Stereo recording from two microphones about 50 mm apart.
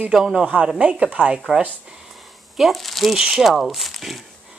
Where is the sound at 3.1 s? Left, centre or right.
Centre.